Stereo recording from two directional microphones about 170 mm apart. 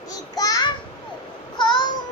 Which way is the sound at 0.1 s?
20° left (ahead or behind).